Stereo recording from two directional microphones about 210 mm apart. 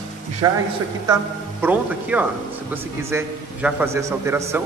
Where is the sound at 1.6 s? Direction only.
10° right (ahead or behind).